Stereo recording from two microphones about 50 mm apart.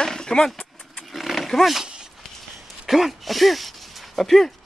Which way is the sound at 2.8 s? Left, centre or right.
Centre.